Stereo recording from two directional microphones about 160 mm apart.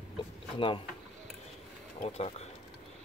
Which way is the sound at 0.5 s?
30° left (ahead or behind).